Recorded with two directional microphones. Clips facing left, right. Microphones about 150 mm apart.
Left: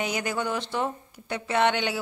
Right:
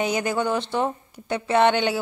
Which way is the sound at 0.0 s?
30° right (ahead or behind).